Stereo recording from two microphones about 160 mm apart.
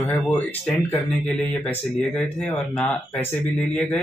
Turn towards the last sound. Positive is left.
turn(degrees=10)  # may be behind; listen again after turning